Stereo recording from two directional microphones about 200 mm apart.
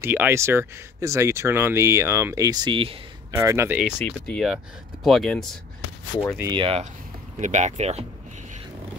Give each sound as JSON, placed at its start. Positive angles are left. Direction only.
{"t": 0.0, "sound": "speech", "side_deg": -10}
{"t": 3.3, "sound": "speech", "side_deg": -15}
{"t": 4.0, "sound": "speech", "side_deg": 5}
{"t": 6.5, "sound": "speech", "side_deg": -30}